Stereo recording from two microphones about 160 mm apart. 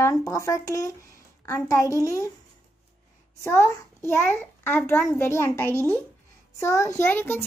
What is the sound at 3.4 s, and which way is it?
A child's voice, 15° left (ahead or behind).